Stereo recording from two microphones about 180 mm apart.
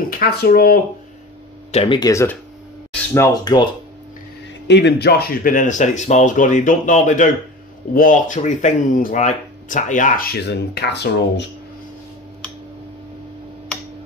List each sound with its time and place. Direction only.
0.1 s speech: 55° left (ahead or behind)
1.7 s speech: 35° left (ahead or behind)
2.0 s speech: 20° left (ahead or behind)
4.6 s speech: 70° left (ahead or behind)